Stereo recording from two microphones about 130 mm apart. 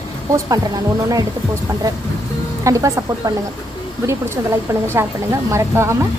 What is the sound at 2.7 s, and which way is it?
Speech, 25° right (ahead or behind).